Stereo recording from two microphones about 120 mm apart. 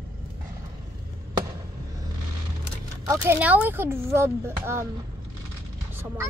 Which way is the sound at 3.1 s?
15° right (ahead or behind).